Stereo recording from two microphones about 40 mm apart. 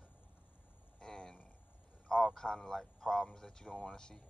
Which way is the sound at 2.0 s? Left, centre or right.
Centre.